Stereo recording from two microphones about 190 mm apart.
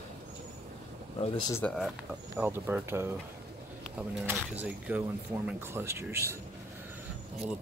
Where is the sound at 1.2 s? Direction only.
20° left (ahead or behind).